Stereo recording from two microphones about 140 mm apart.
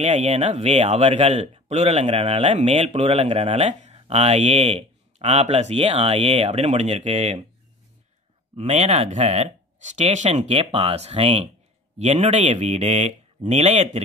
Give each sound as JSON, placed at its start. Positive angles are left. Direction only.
{"t": 0.0, "sound": "a man's voice", "side_deg": -55}
{"t": 8.5, "sound": "a man's voice", "side_deg": -50}